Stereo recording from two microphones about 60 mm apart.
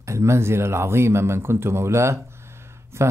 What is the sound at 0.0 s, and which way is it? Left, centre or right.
Speech, right.